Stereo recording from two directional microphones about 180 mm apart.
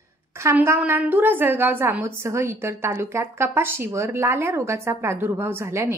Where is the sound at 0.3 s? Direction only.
15° right (ahead or behind).